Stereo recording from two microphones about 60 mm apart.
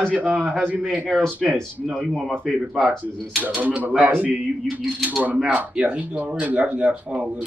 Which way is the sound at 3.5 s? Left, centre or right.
Right.